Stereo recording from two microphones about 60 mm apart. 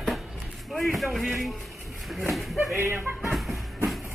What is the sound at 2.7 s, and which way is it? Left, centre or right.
Speech, right.